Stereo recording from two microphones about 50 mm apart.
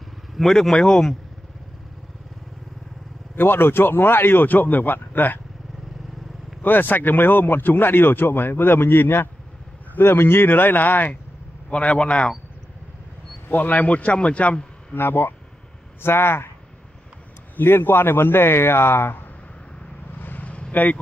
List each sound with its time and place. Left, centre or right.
0.3 s speech: centre
3.3 s speech: left
6.6 s speech: left
11.7 s a man's voice: left
13.5 s a man's voice: left
15.0 s speech: left
17.6 s speech: left
20.2 s vehicle: left
20.7 s speech: left